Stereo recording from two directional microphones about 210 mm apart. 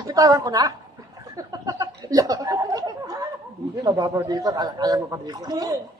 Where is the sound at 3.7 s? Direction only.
20° right (ahead or behind).